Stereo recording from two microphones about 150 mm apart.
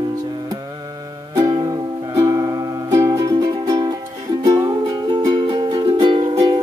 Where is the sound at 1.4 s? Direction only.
25° right (ahead or behind).